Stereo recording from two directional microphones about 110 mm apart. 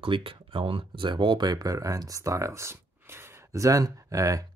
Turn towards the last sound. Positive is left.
turn(degrees=-30)  # may be behind; listen again after turning